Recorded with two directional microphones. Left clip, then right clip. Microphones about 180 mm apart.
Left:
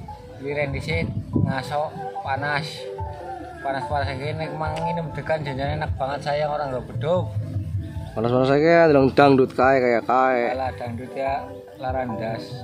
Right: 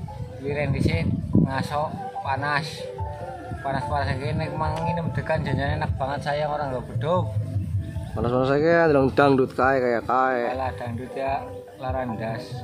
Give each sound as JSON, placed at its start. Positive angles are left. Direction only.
{"t": 0.5, "sound": "a man's voice", "side_deg": 0}
{"t": 8.2, "sound": "speech", "side_deg": 25}
{"t": 10.5, "sound": "a man's voice", "side_deg": 0}